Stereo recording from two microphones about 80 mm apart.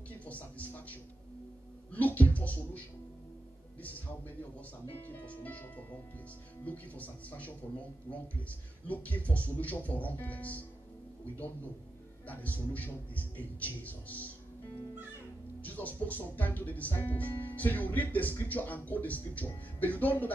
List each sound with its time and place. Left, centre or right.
0.2 s a sound: centre
1.9 s speech: centre
4.4 s speech: left
12.3 s speech: centre
15.6 s speech: left